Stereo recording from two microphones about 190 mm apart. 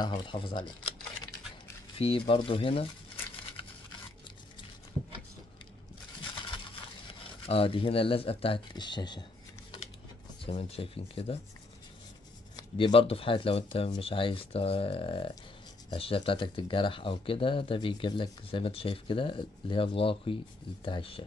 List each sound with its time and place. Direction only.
0.0 s speech: 25° left (ahead or behind)
2.0 s speech: 30° left (ahead or behind)
7.4 s speech: 30° left (ahead or behind)
10.4 s speech: 30° left (ahead or behind)
12.5 s speech: 25° left (ahead or behind)